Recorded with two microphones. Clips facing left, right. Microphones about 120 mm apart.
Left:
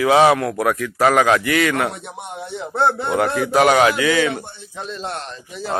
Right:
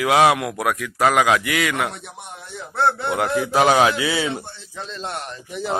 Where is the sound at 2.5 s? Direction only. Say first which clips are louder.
Left 2 dB; 20° left (ahead or behind).